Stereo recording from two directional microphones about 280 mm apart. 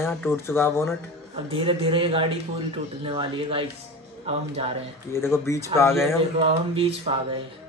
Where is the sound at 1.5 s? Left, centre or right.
Centre.